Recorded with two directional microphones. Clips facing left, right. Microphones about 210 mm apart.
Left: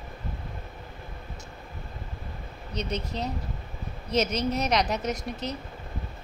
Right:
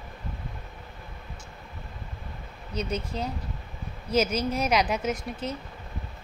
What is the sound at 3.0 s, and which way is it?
Speech, 30° right (ahead or behind).